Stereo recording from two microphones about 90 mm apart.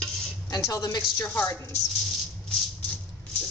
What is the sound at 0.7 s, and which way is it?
Speech, 45° left (ahead or behind).